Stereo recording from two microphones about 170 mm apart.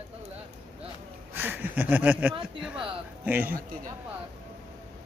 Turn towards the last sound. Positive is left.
turn(degrees=-10)  # may be behind; listen again after turning